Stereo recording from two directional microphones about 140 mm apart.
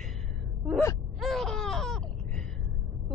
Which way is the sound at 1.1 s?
Centre (ahead or behind).